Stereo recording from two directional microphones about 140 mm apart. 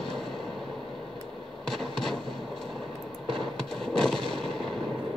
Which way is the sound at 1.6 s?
Centre (ahead or behind).